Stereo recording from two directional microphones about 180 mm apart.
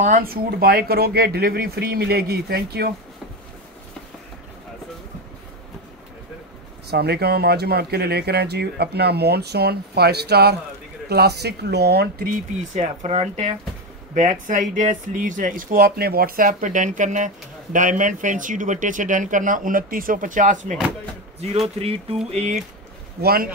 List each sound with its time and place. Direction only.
0.0 s speech: 50° right (ahead or behind)
6.9 s speech: 65° right (ahead or behind)
12.7 s speech: 40° right (ahead or behind)
23.2 s speech: 55° right (ahead or behind)